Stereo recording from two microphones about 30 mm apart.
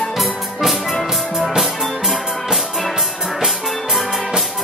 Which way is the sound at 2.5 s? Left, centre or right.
Centre.